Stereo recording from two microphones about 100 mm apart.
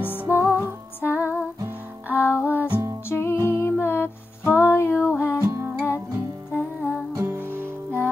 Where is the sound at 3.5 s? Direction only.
25° left (ahead or behind).